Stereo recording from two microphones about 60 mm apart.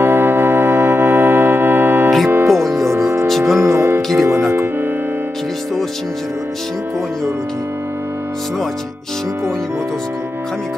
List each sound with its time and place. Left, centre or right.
0.0 s organ: right
2.2 s music: right
2.5 s music: centre
2.9 s music: right
3.3 s music: centre
3.5 s music: right